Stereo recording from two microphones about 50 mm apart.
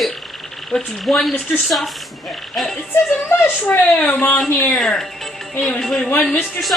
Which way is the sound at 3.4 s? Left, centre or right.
Left.